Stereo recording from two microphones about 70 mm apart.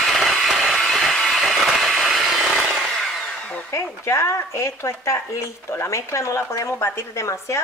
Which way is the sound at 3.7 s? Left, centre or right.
Left.